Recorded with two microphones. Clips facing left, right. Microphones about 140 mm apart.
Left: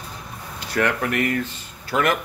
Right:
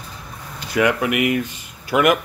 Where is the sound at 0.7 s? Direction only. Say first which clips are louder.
Right 4 dB; 10° right (ahead or behind).